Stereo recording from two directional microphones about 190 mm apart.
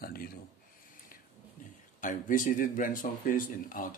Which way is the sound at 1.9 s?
45° left (ahead or behind).